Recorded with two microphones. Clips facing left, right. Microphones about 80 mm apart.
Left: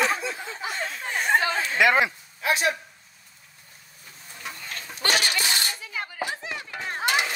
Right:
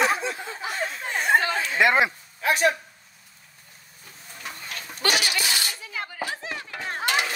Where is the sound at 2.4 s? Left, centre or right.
Right.